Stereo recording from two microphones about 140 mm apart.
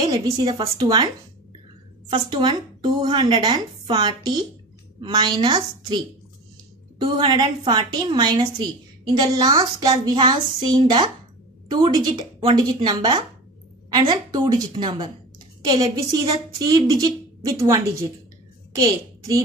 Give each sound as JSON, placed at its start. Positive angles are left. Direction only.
{"t": 0.0, "sound": "a woman's voice", "side_deg": -30}
{"t": 2.0, "sound": "a woman's voice", "side_deg": -35}